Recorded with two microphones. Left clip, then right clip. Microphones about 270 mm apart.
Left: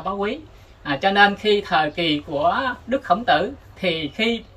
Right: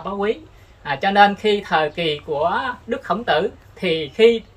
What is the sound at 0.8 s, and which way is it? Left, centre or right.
Speech, centre.